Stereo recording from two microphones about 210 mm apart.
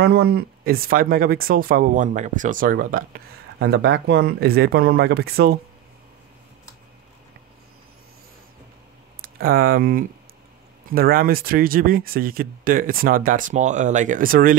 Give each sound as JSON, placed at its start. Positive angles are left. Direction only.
{"t": 0.0, "sound": "speech", "side_deg": -50}
{"t": 9.2, "sound": "speech", "side_deg": -45}